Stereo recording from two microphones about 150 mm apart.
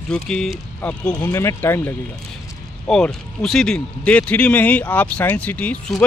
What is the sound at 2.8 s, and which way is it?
Speech, 5° left (ahead or behind).